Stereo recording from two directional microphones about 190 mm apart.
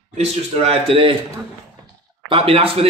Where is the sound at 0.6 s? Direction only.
25° right (ahead or behind).